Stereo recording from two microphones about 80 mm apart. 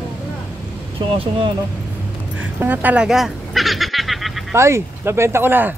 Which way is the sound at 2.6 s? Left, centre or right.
Right.